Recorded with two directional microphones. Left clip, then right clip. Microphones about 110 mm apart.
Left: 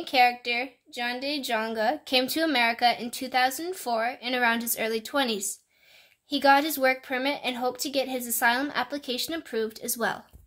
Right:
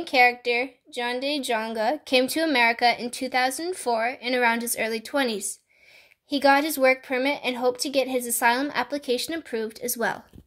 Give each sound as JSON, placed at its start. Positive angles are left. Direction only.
{"t": 0.0, "sound": "a woman's voice", "side_deg": -20}